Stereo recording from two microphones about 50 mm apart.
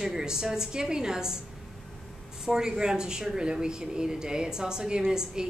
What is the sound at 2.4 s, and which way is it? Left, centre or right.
Speech, centre.